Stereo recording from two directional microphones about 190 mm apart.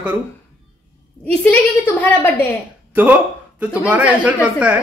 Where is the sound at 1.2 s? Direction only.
10° left (ahead or behind).